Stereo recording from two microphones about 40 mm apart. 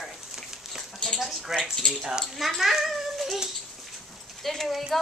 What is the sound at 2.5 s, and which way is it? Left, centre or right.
Speech, centre.